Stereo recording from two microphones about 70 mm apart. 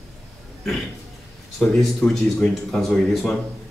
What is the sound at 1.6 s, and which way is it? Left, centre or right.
Speech, centre.